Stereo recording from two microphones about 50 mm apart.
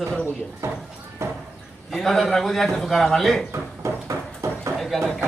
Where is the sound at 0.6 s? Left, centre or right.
Right.